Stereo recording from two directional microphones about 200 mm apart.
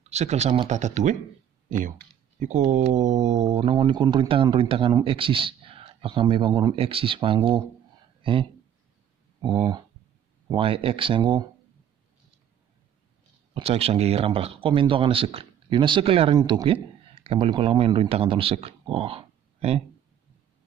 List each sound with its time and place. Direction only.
0.1 s speech: 35° right (ahead or behind)
10.5 s speech: 25° right (ahead or behind)
13.6 s speech: 30° right (ahead or behind)